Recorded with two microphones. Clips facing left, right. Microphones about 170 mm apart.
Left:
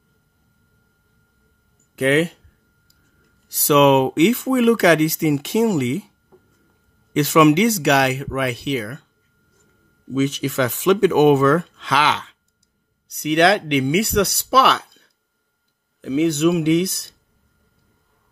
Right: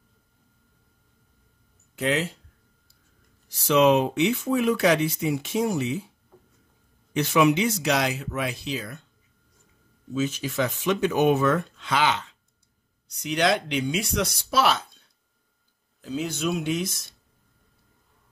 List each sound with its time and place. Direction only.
2.0 s speech: 65° left (ahead or behind)
3.4 s speech: 75° left (ahead or behind)
7.2 s speech: 85° left; by 9.0 s 65° left (ahead or behind)
10.1 s speech: 75° left (ahead or behind)
13.1 s speech: 65° left (ahead or behind)